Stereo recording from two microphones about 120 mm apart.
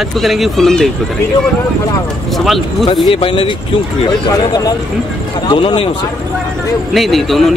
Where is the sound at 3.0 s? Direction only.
45° left (ahead or behind).